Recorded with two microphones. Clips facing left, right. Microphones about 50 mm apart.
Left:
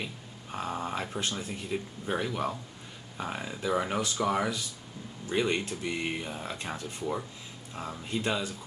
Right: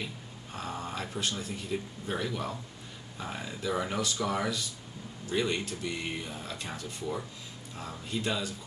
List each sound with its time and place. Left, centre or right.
0.0 s a sound: centre
1.3 s speech: left
7.7 s speech: left